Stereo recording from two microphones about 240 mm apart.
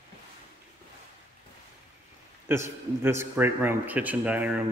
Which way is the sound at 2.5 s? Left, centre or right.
Centre.